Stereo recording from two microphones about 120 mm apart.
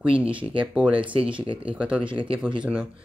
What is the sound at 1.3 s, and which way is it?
Speech, 45° right (ahead or behind).